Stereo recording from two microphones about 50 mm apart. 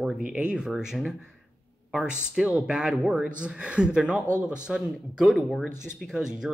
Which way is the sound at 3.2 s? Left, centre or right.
Right.